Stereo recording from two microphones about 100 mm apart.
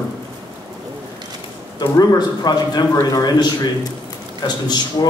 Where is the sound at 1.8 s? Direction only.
40° left (ahead or behind).